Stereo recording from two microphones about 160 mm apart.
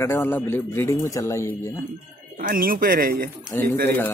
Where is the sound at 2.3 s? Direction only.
60° right (ahead or behind).